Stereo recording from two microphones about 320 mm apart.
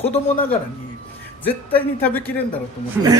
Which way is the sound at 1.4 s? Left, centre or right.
Centre.